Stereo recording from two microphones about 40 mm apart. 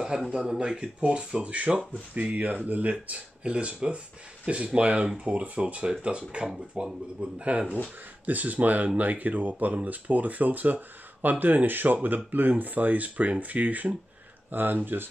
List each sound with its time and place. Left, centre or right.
0.3 s speech: right
2.3 s speech: right
7.2 s speech: right
8.3 s speech: right
14.5 s speech: right